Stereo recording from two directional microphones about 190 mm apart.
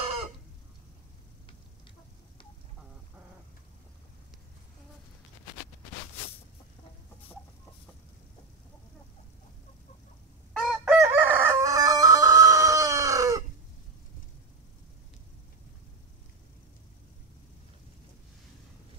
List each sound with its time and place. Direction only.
10.5 s chicken: centre (ahead or behind); by 13.4 s 15° right (ahead or behind)